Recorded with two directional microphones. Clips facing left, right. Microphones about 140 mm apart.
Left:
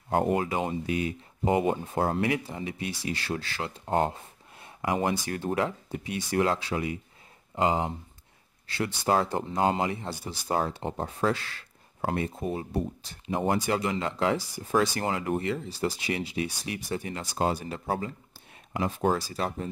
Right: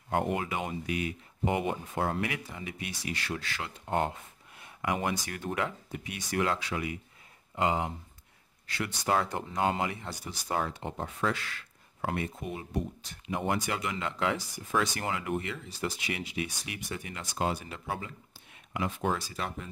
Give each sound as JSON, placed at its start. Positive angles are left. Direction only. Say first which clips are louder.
{"t": 0.1, "sound": "speech", "louder": "left 5 dB", "side_deg": 35}